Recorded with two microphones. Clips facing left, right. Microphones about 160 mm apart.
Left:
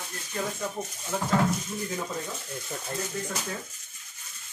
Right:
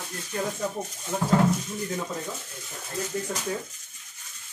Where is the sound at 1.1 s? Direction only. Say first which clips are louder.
Right 2 dB; 15° right (ahead or behind).